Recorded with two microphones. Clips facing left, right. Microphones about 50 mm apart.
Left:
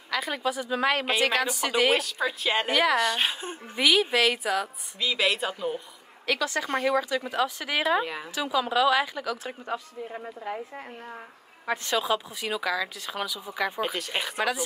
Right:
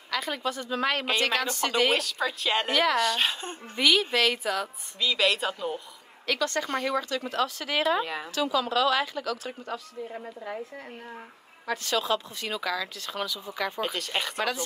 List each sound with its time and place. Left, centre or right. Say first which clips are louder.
0.1 s speech: left 2 dB; centre
9.4 s speech: left 2 dB; left
11.6 s speech: left 1 dB; left
12.0 s speech: left 1 dB; centre